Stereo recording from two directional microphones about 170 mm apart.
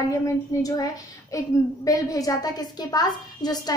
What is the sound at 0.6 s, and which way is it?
A woman's voice, 20° left (ahead or behind).